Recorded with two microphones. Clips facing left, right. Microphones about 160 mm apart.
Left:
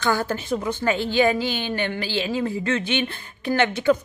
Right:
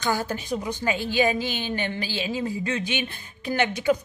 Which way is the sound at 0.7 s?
15° right (ahead or behind).